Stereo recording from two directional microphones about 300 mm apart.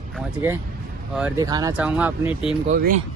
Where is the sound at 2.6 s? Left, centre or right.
Right.